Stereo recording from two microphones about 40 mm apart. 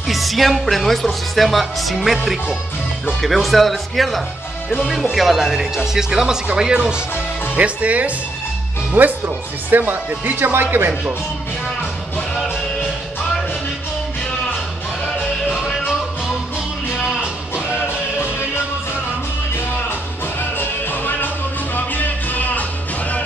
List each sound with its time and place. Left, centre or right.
0.1 s speech: centre
3.2 s speech: centre; by 7.0 s right
7.5 s speech: right
8.9 s speech: right
15.5 s music: centre
17.7 s music: left
20.3 s music: left